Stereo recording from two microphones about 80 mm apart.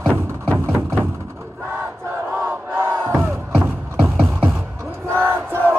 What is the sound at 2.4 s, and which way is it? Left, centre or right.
Crowd, right.